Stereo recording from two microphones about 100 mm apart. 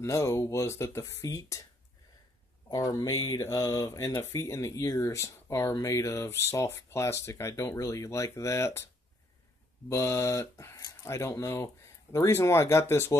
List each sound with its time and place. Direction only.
0.0 s speech: 30° left (ahead or behind)
2.7 s speech: 40° left (ahead or behind)
9.8 s speech: 30° left (ahead or behind)